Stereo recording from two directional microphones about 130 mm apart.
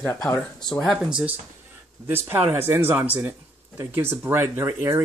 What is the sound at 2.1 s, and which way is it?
Speech, 15° right (ahead or behind).